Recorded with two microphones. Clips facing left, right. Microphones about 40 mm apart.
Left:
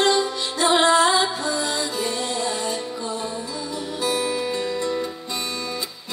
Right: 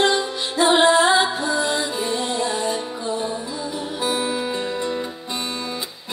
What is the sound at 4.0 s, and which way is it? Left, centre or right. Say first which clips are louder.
Music: even; centre.